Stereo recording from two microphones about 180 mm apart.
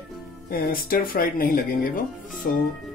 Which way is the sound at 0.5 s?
55° left (ahead or behind).